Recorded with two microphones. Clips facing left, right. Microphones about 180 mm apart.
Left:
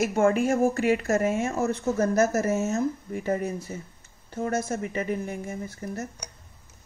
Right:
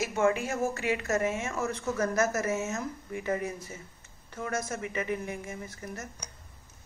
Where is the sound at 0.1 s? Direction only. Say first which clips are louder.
Left 5 dB; 50° left (ahead or behind).